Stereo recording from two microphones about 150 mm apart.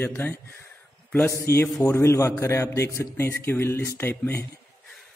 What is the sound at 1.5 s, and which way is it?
A man's voice, 15° left (ahead or behind).